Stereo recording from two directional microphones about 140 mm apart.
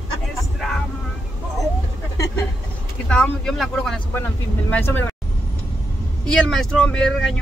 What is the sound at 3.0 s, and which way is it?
Speech, 5° left (ahead or behind).